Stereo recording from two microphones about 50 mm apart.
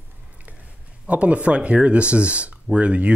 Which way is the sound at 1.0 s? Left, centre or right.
Right.